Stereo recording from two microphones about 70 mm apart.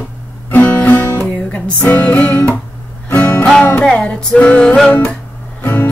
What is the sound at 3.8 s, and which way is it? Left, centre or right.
Music, centre.